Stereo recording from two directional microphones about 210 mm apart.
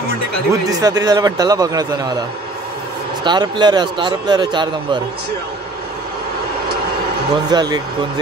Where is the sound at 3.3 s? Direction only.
20° right (ahead or behind).